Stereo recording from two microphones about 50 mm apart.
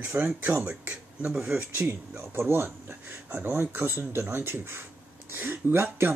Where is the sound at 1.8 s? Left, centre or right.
Right.